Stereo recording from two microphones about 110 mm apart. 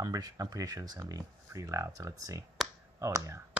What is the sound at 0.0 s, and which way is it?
Speech, 35° right (ahead or behind).